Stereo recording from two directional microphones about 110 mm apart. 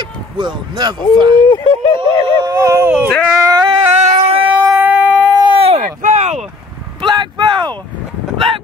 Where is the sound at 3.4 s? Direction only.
35° right (ahead or behind).